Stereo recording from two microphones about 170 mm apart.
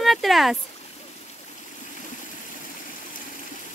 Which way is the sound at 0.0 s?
Centre (ahead or behind).